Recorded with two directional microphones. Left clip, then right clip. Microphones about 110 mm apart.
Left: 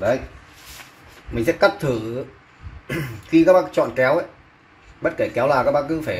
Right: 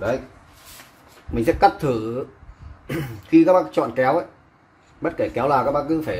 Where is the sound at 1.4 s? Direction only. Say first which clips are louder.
Right 1 dB; 90° right.